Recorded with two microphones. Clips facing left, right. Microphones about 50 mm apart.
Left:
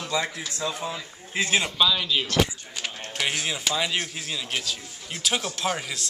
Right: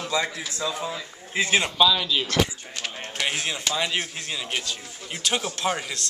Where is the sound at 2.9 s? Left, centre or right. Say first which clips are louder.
Right 1 dB; right.